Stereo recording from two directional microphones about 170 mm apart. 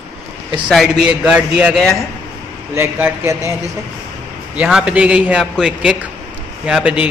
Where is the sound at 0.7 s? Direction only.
Centre (ahead or behind).